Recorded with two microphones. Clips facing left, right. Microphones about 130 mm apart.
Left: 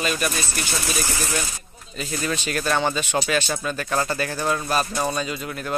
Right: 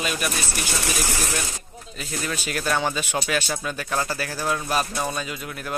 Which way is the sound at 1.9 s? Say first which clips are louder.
Left 3 dB; 5° right (ahead or behind).